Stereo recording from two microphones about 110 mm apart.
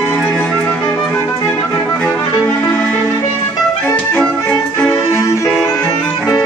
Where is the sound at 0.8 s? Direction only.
30° left (ahead or behind).